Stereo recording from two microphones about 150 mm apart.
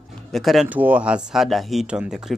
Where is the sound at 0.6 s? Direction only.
10° right (ahead or behind).